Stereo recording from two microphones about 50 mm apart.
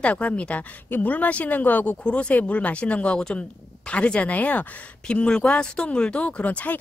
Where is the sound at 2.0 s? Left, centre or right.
Left.